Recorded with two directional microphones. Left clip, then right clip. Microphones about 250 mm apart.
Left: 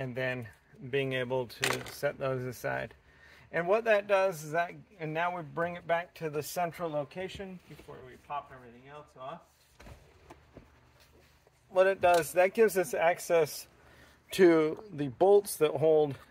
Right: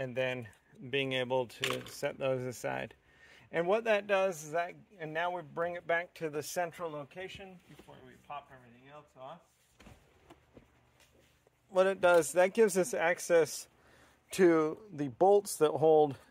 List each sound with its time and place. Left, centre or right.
0.0 s a man's voice: right
8.3 s speech: right
11.7 s a man's voice: right
14.3 s speech: centre